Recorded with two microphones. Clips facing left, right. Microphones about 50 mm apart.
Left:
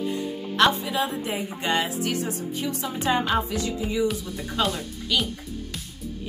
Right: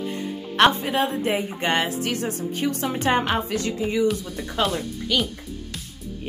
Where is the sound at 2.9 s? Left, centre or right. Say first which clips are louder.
Even; right.